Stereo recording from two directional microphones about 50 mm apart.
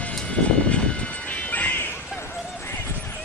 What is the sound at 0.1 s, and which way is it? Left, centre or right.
Music, left.